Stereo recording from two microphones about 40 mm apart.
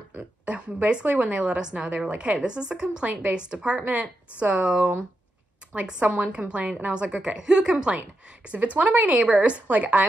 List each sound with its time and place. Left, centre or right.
0.5 s a woman's voice: right
4.6 s a woman's voice: centre
5.7 s a woman's voice: right
8.7 s a woman's voice: right